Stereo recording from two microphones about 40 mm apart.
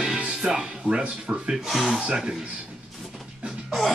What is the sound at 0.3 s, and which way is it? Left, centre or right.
Speech, centre.